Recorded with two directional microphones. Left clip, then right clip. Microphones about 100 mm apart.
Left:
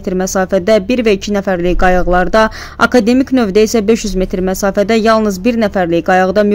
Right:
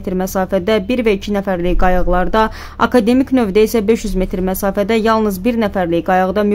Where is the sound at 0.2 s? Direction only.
25° left (ahead or behind).